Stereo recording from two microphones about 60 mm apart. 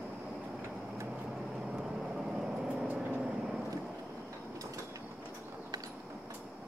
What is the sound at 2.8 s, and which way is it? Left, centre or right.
Vehicle, right.